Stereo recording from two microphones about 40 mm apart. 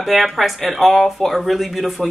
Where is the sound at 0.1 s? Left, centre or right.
Centre.